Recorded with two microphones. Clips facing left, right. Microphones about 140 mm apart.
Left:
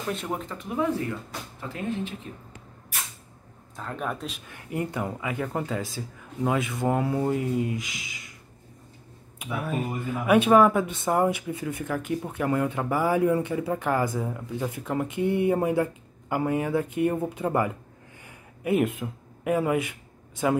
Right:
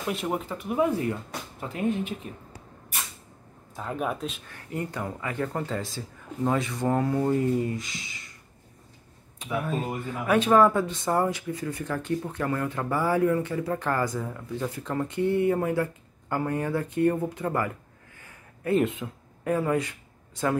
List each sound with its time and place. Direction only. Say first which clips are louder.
0.1 s speech: right 3 dB; 5° right (ahead or behind)
3.7 s speech: right 2 dB; 5° right (ahead or behind)
4.5 s speech: left 2 dB; 15° left (ahead or behind)
9.4 s speech: even; 10° left (ahead or behind)
18.2 s a sound: left 1 dB; 15° left (ahead or behind)